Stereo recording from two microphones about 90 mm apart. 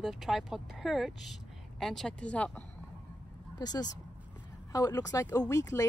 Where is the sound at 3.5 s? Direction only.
45° left (ahead or behind).